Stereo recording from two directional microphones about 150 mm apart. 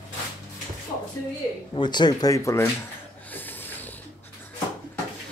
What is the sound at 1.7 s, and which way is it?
Speech, 30° left (ahead or behind).